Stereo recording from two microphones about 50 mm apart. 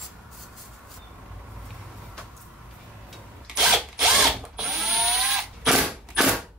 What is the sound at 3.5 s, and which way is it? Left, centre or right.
Drill, centre.